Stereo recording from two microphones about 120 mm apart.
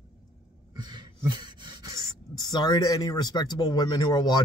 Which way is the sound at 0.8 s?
35° right (ahead or behind).